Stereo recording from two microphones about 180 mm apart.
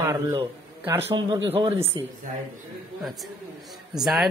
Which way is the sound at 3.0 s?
Centre (ahead or behind).